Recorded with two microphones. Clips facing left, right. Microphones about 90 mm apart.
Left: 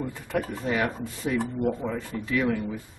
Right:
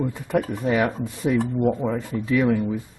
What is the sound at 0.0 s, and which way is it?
Speech, 15° right (ahead or behind).